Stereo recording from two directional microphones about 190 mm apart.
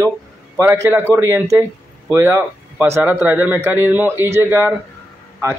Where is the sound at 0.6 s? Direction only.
15° right (ahead or behind).